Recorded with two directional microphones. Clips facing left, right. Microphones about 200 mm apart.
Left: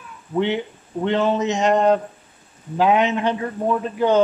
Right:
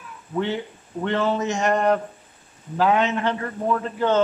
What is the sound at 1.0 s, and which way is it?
Speech, 20° left (ahead or behind).